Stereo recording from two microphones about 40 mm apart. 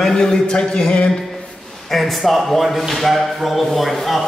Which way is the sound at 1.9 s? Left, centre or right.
Centre.